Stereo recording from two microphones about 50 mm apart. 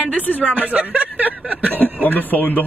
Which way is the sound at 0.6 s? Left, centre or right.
Right.